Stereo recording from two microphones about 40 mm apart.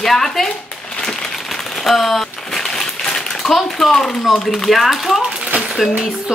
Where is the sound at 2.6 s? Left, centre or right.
Centre.